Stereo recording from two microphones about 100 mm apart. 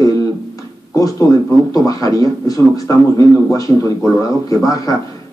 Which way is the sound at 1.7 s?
35° left (ahead or behind).